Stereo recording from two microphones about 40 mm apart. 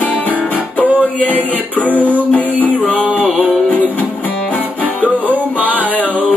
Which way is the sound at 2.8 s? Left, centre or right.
Left.